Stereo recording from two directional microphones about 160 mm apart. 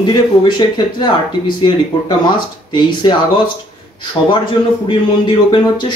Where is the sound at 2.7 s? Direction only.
30° left (ahead or behind).